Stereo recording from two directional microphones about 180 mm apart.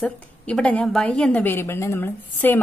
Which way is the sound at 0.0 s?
5° left (ahead or behind).